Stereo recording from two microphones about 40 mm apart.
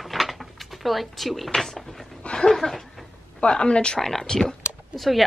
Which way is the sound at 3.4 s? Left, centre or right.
Left.